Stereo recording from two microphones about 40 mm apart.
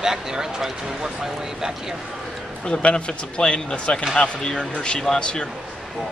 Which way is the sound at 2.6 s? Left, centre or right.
Left.